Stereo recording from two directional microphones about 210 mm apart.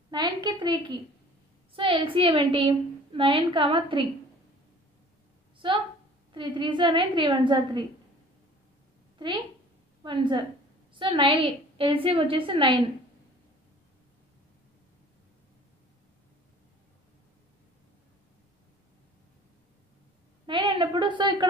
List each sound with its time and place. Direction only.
0.1 s a woman's voice: 20° right (ahead or behind)
5.6 s a woman's voice: 25° right (ahead or behind)
10.0 s a woman's voice: 20° right (ahead or behind)
20.4 s a woman's voice: 20° right (ahead or behind)